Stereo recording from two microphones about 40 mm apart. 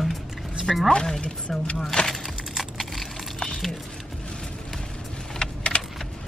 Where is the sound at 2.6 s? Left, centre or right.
Centre.